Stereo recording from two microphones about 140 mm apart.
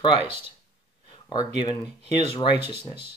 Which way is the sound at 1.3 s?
35° left (ahead or behind).